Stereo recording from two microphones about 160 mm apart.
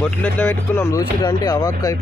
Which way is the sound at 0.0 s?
10° left (ahead or behind).